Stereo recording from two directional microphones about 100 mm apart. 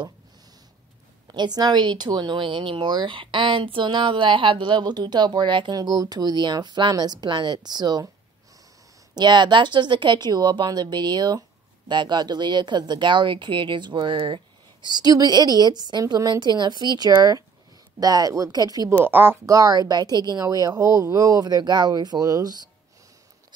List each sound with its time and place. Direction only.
1.2 s speech: 45° right (ahead or behind)
9.1 s speech: 50° right (ahead or behind)
19.0 s speech: 20° right (ahead or behind)
19.4 s speech: 35° right (ahead or behind)